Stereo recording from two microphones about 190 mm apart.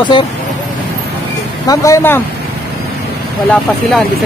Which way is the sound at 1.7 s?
15° left (ahead or behind).